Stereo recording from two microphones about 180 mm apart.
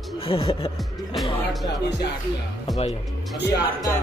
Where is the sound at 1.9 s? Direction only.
70° left (ahead or behind).